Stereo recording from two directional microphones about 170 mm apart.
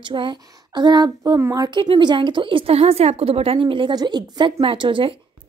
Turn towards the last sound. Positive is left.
turn(degrees=-30)  # may be behind; listen again after turning